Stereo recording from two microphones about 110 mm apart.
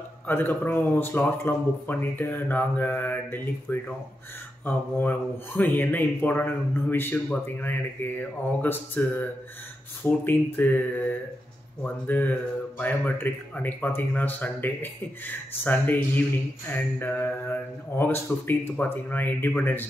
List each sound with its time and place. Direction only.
0.3 s speech: 15° left (ahead or behind)